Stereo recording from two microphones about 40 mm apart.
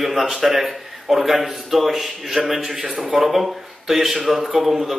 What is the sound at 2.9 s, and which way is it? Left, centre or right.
Speech, right.